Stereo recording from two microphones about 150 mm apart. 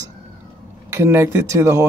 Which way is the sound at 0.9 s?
20° right (ahead or behind).